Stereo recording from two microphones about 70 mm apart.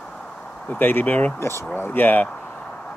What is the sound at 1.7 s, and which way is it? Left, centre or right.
Speech, left.